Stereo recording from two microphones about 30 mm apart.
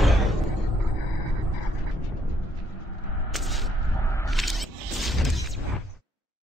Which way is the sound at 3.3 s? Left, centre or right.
Centre.